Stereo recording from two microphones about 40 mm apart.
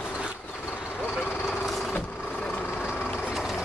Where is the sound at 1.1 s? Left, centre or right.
Left.